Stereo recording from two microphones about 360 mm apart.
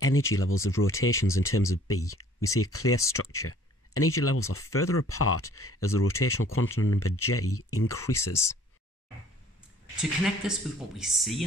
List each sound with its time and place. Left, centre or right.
0.0 s speech: left
1.2 s speech: centre
2.5 s speech: left
8.3 s speech: centre
9.9 s speech: centre